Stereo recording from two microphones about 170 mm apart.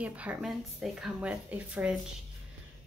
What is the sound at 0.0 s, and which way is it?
Speech, 10° right (ahead or behind).